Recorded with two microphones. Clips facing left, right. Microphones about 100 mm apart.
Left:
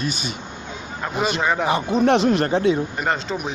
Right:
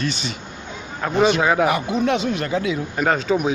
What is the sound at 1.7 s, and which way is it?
Speech, 35° left (ahead or behind).